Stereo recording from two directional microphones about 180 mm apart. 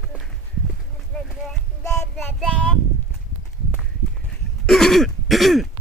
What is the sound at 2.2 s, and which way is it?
Child singing, centre (ahead or behind).